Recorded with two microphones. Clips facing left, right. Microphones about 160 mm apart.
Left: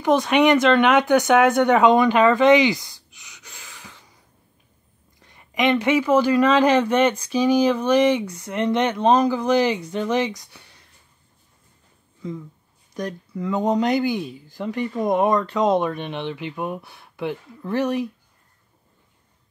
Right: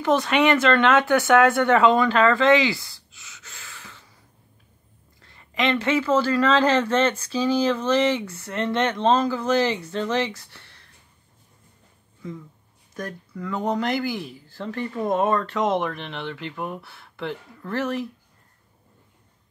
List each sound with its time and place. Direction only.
0.0 s speech: 15° left (ahead or behind)
5.2 s speech: 15° left (ahead or behind)
12.9 s speech: 20° left (ahead or behind)